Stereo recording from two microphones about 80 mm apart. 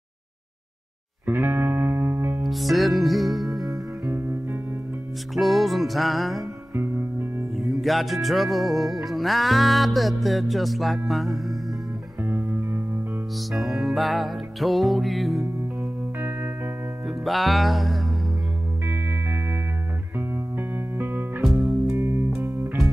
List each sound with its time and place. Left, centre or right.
1.2 s music: right
2.4 s music: centre
4.1 s music: right
5.3 s music: centre
6.7 s music: right
7.5 s music: centre
12.2 s music: right
13.5 s music: centre
15.8 s music: right
17.2 s music: centre
18.9 s music: right